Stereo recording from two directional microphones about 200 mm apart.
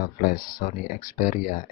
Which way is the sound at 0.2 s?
45° left (ahead or behind).